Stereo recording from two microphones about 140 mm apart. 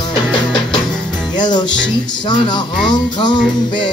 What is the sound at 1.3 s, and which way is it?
Music, 30° left (ahead or behind).